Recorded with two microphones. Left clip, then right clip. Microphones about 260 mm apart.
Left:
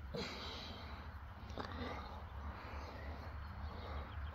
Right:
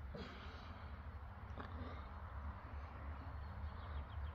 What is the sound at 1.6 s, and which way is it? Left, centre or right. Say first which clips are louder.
Biting: left 7 dB; left.